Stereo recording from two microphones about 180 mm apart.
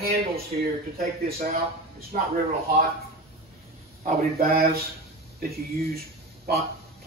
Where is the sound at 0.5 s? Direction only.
45° right (ahead or behind).